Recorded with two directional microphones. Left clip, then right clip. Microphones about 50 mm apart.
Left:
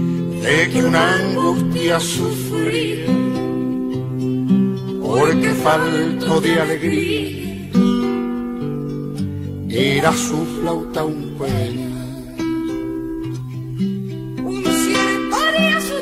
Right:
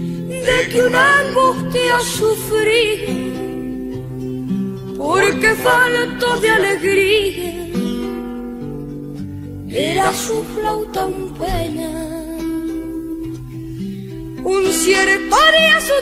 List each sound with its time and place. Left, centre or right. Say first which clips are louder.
0.5 s music: right 2 dB; right
5.0 s music: right 3 dB; right
9.8 s music: even; right
14.5 s music: right 4 dB; right